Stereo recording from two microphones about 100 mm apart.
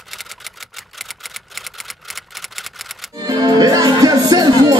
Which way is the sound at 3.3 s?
40° right (ahead or behind).